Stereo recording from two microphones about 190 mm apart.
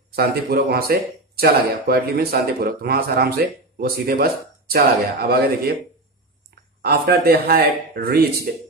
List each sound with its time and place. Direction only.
0.1 s speech: 55° right (ahead or behind)
6.8 s speech: 55° right (ahead or behind)